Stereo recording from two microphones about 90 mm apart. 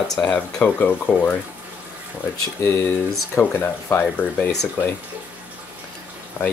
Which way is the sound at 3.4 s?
25° left (ahead or behind).